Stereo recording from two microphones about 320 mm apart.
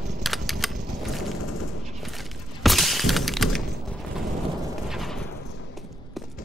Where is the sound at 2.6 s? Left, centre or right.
Centre.